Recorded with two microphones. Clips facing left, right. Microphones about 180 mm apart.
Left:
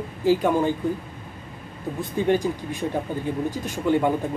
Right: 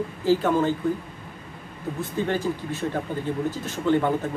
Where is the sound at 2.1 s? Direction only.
15° left (ahead or behind).